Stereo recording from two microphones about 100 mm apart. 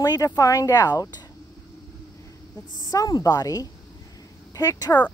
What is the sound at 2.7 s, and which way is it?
Speech, 40° left (ahead or behind).